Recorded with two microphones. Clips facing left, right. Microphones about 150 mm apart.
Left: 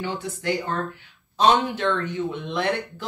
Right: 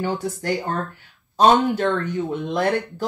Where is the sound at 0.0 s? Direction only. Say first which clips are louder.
Right 4 dB; 45° right (ahead or behind).